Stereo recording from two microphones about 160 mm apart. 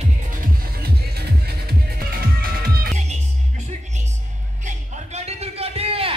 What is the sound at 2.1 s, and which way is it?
Music, 65° right (ahead or behind).